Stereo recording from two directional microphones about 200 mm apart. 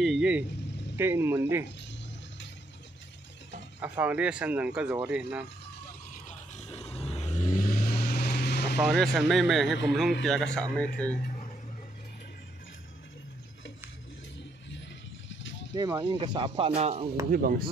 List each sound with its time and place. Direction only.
0.0 s speech: 5° right (ahead or behind)
3.8 s speech: 5° right (ahead or behind)
6.2 s vehicle: 30° left (ahead or behind); by 8.7 s 55° left (ahead or behind)
8.7 s speech: centre (ahead or behind)
15.4 s a sound: 65° left (ahead or behind)
15.7 s speech: 20° right (ahead or behind)
17.3 s speech: 45° right (ahead or behind)